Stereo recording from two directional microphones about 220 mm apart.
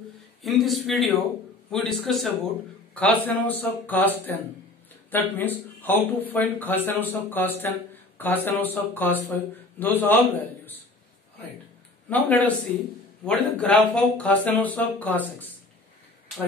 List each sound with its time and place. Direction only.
0.4 s speech: centre (ahead or behind)
5.1 s speech: 10° left (ahead or behind)
12.1 s speech: 5° left (ahead or behind)